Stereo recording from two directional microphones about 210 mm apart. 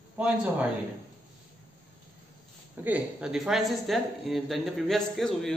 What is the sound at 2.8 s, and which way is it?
A woman's voice, 5° right (ahead or behind).